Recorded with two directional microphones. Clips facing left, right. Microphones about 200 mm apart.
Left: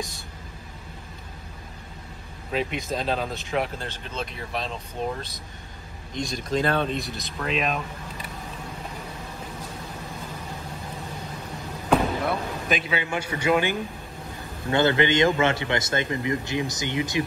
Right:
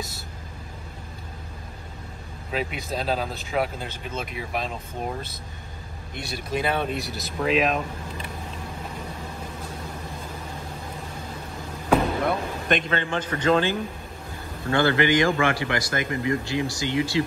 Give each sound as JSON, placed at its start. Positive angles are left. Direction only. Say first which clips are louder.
{"t": 2.5, "sound": "speech", "louder": "left 1 dB", "side_deg": -5}
{"t": 6.3, "sound": "speech", "louder": "left 1 dB", "side_deg": -10}
{"t": 11.9, "sound": "a man's voice", "louder": "right 1 dB", "side_deg": 0}